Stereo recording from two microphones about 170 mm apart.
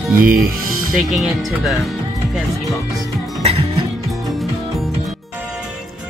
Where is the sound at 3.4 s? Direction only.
35° right (ahead or behind).